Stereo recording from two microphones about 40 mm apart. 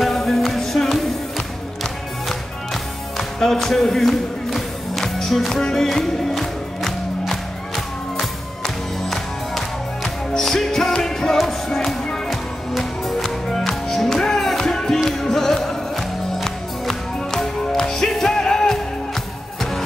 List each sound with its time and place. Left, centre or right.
0.0 s music: centre
5.6 s music: centre